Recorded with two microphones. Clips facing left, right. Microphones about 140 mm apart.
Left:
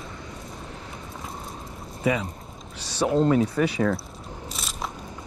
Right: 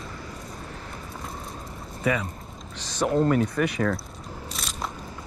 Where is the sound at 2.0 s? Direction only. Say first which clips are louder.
Left 1 dB; 25° left (ahead or behind).